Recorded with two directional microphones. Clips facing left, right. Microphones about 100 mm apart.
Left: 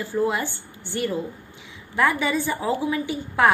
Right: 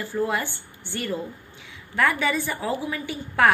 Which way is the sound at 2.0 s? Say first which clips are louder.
Left 1 dB; 20° left (ahead or behind).